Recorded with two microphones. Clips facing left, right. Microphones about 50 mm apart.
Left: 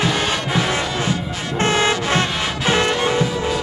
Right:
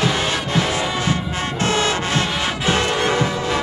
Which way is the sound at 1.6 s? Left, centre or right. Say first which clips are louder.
Left 2 dB; left.